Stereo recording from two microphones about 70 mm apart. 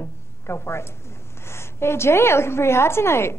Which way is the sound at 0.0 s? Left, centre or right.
Left.